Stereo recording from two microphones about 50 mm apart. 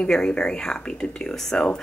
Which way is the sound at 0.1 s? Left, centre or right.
Centre.